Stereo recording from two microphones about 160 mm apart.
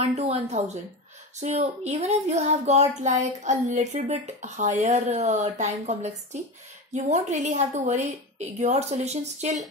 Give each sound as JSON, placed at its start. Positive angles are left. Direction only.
{"t": 0.1, "sound": "speech", "side_deg": -45}